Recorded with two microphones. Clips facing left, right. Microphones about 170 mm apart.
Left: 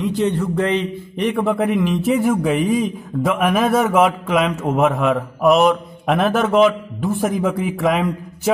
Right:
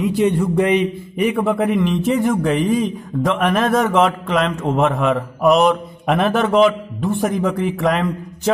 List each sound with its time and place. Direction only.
0.0 s a man's voice: 10° right (ahead or behind)